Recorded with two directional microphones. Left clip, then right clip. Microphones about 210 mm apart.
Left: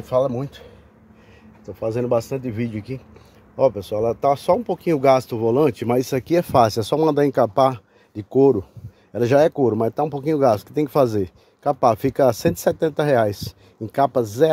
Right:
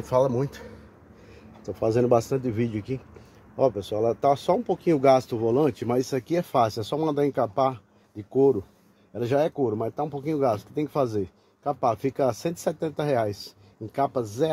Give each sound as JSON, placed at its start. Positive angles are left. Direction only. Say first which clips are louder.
{"t": 0.0, "sound": "speech", "louder": "left 2 dB", "side_deg": 10}
{"t": 1.7, "sound": "speech", "louder": "even", "side_deg": 5}